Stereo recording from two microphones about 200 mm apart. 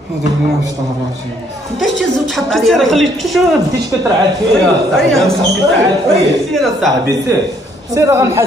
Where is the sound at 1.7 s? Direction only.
Centre (ahead or behind).